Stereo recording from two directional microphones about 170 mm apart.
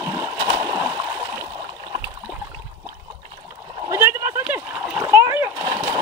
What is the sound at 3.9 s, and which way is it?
Splash, 15° right (ahead or behind).